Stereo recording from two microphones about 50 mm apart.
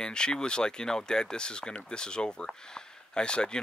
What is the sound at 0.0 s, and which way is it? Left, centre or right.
Speech, centre.